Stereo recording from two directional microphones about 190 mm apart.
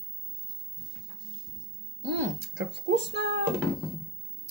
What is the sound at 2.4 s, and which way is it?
Speech, 65° right (ahead or behind).